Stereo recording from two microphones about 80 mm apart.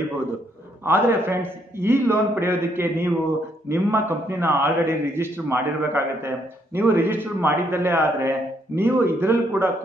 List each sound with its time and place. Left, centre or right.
0.8 s a man's voice: right